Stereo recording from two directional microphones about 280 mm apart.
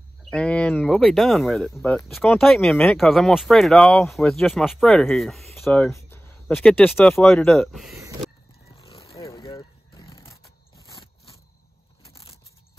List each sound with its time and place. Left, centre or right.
0.2 s speech: centre
8.6 s vehicle: left
12.0 s a sound: centre